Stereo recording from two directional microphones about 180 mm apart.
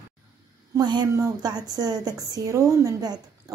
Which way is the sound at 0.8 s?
25° right (ahead or behind).